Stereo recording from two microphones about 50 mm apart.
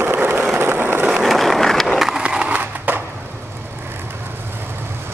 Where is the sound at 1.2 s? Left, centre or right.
Centre.